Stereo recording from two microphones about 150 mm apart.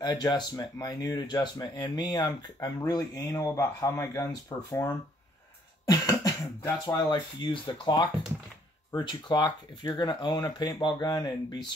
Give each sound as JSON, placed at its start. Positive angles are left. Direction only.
{"t": 0.0, "sound": "speech", "side_deg": 30}
{"t": 5.9, "sound": "cough", "side_deg": 25}
{"t": 6.6, "sound": "speech", "side_deg": 25}